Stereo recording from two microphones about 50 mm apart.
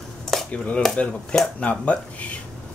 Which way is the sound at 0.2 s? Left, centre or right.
Centre.